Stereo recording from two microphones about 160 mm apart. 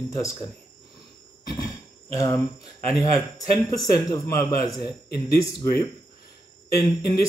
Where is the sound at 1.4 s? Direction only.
25° left (ahead or behind).